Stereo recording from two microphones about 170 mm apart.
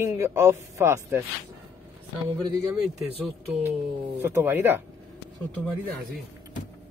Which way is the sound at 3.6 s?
15° right (ahead or behind).